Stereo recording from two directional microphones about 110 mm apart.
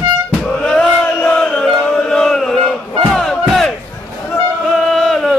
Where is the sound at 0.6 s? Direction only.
10° left (ahead or behind).